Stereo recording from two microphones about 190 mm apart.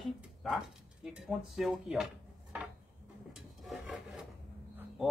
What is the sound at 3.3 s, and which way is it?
Filing, centre (ahead or behind).